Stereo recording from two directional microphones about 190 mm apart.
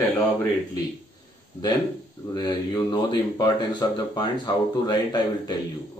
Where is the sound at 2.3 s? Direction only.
20° left (ahead or behind).